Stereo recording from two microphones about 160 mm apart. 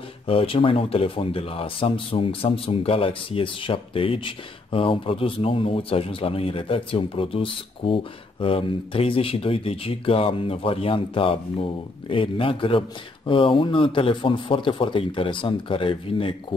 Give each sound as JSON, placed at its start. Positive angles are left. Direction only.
{"t": 0.3, "sound": "speech", "side_deg": 35}